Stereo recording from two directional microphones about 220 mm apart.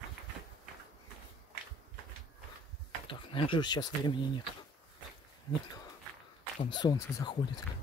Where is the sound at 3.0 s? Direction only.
25° left (ahead or behind).